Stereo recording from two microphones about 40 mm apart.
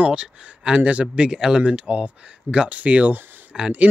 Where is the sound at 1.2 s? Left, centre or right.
Centre.